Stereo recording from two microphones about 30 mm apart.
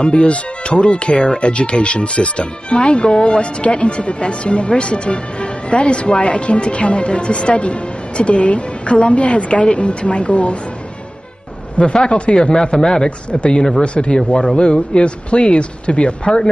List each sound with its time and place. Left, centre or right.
0.0 s a woman's voice: left
11.8 s speech: left
13.3 s speech: left
13.6 s speech: left